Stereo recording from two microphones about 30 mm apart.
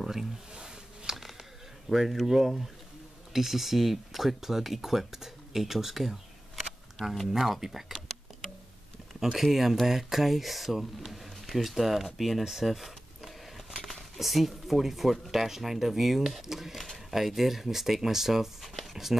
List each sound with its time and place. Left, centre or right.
0.0 s a sound: centre
1.9 s speech: centre
7.6 s speech: centre
9.2 s speech: centre